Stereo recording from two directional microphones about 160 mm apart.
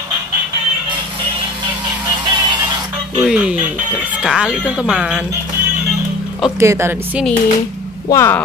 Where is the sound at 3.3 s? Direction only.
5° right (ahead or behind).